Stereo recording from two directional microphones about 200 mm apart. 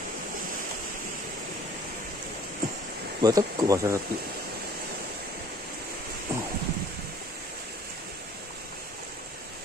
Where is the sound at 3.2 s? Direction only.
20° right (ahead or behind).